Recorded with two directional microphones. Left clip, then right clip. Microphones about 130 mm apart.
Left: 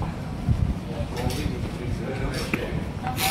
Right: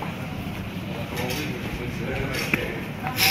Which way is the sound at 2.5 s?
10° left (ahead or behind).